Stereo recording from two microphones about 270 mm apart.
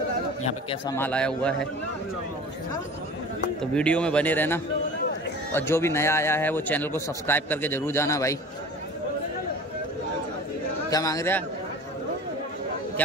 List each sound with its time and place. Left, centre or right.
0.4 s a man's voice: left
0.9 s speech: centre
3.7 s speech: centre
10.9 s speech: centre